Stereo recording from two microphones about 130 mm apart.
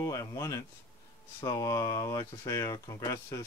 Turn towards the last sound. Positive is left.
turn(degrees=25)  # may be behind; listen again after turning